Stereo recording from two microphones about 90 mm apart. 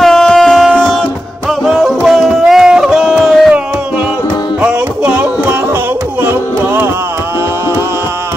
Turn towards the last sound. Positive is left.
turn(degrees=-25)  # may be behind; listen again after turning